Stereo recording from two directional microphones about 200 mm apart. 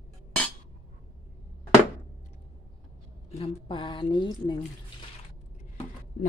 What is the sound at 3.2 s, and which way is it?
Speech, 30° left (ahead or behind).